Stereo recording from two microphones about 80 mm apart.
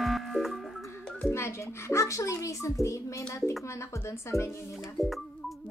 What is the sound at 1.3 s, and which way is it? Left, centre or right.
A child's voice, left.